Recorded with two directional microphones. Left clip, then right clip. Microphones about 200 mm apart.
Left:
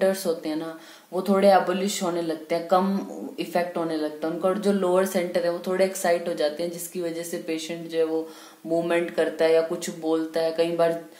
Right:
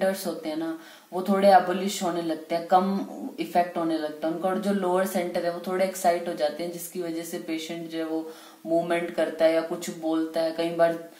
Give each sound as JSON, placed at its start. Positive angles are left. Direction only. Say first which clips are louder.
{"t": 0.0, "sound": "speech", "louder": "left 3 dB", "side_deg": 40}